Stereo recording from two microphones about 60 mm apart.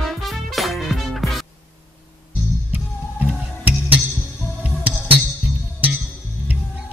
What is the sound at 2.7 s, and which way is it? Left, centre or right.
Music, right.